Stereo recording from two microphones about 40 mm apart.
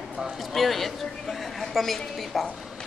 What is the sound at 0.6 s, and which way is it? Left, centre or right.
A woman's voice, centre.